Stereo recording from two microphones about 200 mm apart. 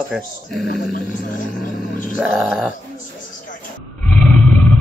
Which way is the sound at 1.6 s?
45° left (ahead or behind).